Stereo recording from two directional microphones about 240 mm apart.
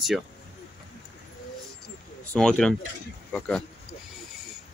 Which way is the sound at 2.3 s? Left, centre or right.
Centre.